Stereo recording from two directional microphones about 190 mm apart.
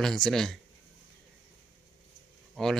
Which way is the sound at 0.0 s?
Centre (ahead or behind).